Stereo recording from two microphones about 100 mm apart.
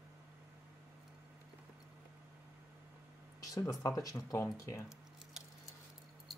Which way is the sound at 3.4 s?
35° left (ahead or behind).